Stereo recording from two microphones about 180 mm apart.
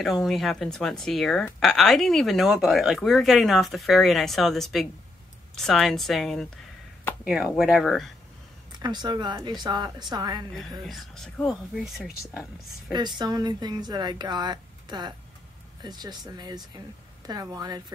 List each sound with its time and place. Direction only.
0.0 s speech: centre (ahead or behind)
8.7 s speech: 25° right (ahead or behind)
10.9 s speech: centre (ahead or behind)
13.2 s speech: 20° right (ahead or behind)